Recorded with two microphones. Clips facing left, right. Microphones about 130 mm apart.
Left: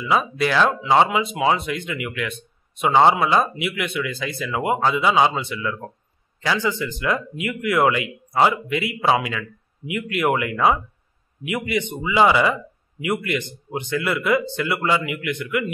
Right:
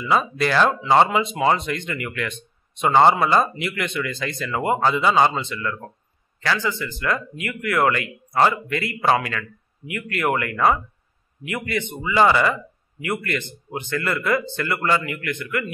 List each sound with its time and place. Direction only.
0.0 s speech: 5° left (ahead or behind)